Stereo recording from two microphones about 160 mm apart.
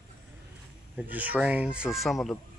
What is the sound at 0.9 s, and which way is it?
Speech, 10° right (ahead or behind).